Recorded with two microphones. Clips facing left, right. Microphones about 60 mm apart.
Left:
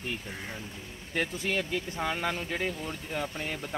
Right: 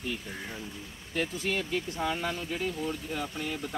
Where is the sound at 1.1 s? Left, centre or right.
Left.